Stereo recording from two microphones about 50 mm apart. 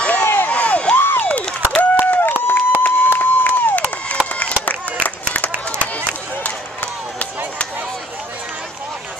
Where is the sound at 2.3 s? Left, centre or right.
Left.